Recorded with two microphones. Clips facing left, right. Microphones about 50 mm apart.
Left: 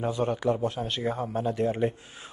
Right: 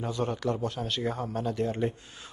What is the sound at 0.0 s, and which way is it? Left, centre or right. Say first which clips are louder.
A man's voice: left 4 dB; centre.